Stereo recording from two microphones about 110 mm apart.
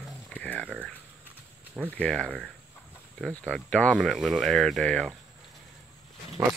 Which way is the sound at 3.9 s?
Centre (ahead or behind).